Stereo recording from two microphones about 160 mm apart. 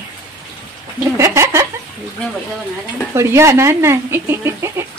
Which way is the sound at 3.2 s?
15° right (ahead or behind).